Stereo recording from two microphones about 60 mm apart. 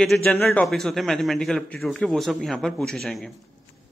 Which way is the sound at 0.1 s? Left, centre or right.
Left.